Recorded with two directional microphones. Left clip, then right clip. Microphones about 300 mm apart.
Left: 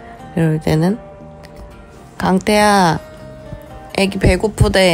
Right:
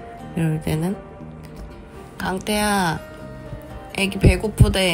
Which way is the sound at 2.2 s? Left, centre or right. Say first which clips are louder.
Left 10 dB; left.